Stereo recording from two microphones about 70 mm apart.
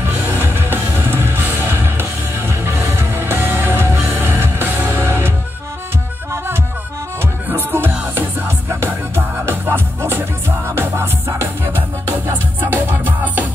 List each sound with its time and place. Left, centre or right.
0.0 s music: right
6.3 s music: right
12.3 s music: right